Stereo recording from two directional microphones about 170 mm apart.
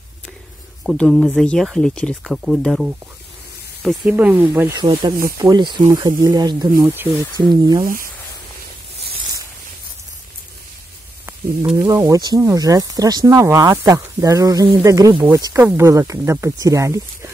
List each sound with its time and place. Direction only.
0.8 s speech: centre (ahead or behind)
4.7 s speech: 25° right (ahead or behind)
6.8 s speech: 10° right (ahead or behind)
7.3 s speech: 25° right (ahead or behind)
7.8 s speech: 55° right (ahead or behind)
11.8 s speech: 20° right (ahead or behind)